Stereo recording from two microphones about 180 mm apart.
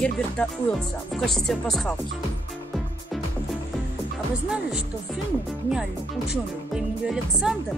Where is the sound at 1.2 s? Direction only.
Centre (ahead or behind).